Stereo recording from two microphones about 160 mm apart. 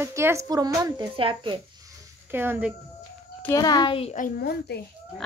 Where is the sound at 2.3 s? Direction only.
15° right (ahead or behind).